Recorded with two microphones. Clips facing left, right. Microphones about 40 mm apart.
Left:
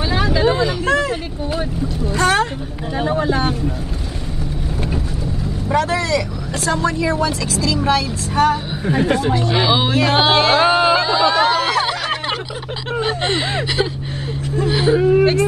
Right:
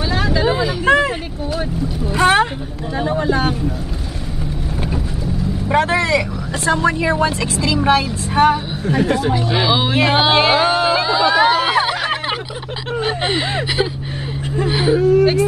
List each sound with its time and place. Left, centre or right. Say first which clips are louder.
0.1 s vehicle: left 1 dB; centre
0.8 s vehicle: right 6 dB; right
2.1 s a sound: right 3 dB; right
3.0 s speech: even; centre
5.7 s speech: right 2 dB; right
8.8 s speech: even; centre
9.3 s speech: even; centre
11.0 s a sound: right 1 dB; centre
13.0 s speech: even; centre
15.0 s speech: right 1 dB; left